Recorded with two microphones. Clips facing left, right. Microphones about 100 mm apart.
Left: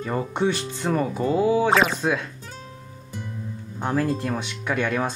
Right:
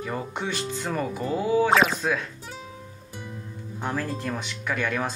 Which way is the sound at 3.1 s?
5° right (ahead or behind).